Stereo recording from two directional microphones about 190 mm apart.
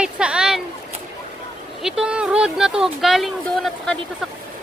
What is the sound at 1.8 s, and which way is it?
Speech, 5° right (ahead or behind).